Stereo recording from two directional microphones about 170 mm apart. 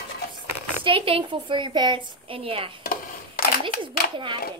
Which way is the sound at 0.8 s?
30° right (ahead or behind).